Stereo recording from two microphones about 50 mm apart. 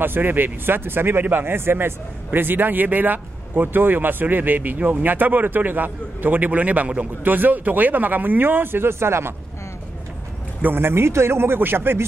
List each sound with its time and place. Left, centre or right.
0.0 s a man's voice: right
10.6 s a man's voice: right